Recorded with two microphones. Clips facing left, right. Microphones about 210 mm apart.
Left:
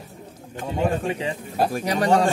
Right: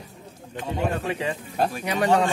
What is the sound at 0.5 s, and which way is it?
A man's voice, 45° left (ahead or behind).